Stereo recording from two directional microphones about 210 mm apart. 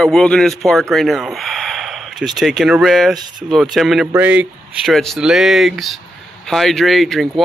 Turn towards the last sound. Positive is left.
turn(degrees=0)  # may be behind; listen again after turning